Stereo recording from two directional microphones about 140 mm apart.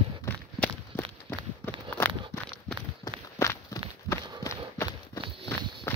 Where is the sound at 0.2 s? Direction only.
15° left (ahead or behind).